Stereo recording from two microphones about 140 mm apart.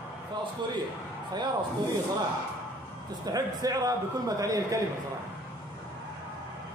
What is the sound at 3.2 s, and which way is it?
A man's voice, 25° right (ahead or behind).